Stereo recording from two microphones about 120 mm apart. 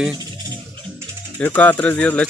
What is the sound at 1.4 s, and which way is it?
Speech, 15° left (ahead or behind).